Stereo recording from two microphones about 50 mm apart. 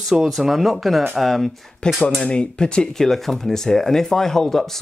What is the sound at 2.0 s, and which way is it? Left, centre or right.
Speech, centre.